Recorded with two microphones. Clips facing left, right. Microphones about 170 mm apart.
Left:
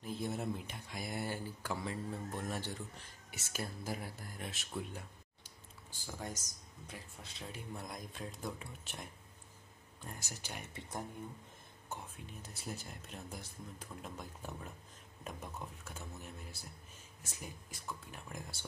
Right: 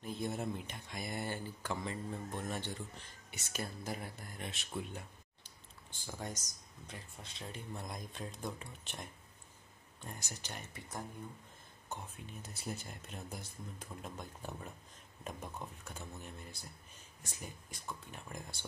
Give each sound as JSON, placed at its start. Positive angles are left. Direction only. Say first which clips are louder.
{"t": 0.0, "sound": "speech", "louder": "even", "side_deg": 0}
{"t": 10.0, "sound": "speech", "louder": "even", "side_deg": 5}
{"t": 10.7, "sound": "speech", "louder": "left 3 dB", "side_deg": 20}
{"t": 11.9, "sound": "speech", "louder": "right 1 dB", "side_deg": 0}